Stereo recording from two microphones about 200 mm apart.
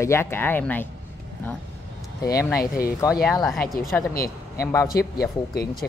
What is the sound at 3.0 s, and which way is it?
Speech, 15° left (ahead or behind).